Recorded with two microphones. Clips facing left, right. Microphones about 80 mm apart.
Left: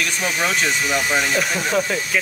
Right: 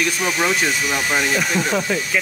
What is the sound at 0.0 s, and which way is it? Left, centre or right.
Speech, centre.